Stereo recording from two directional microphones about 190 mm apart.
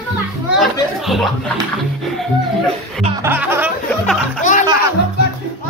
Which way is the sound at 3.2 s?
10° right (ahead or behind).